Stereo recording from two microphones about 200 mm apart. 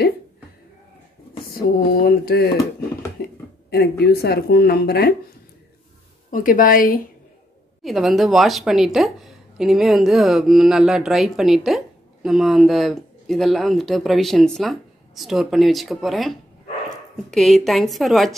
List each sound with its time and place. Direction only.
2.0 s speech: 50° left (ahead or behind)
3.2 s a sound: 50° left (ahead or behind)
3.7 s speech: 55° left (ahead or behind)
6.3 s speech: 45° left (ahead or behind)
7.8 s speech: centre (ahead or behind)